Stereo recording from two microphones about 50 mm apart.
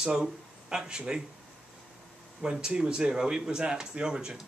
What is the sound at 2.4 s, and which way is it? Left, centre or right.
Speech, centre.